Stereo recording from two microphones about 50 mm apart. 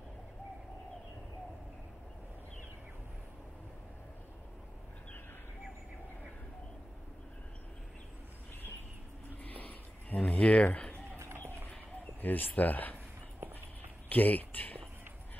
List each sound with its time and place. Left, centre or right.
9.4 s a sound: left
12.2 s speech: left
14.0 s speech: left